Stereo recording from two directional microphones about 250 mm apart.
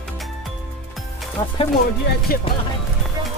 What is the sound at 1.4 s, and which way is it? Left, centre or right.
Speech, centre.